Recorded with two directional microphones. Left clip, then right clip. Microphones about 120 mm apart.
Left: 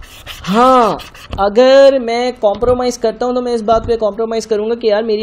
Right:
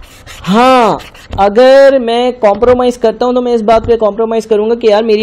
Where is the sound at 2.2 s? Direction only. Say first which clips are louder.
Right 6 dB; 45° right (ahead or behind).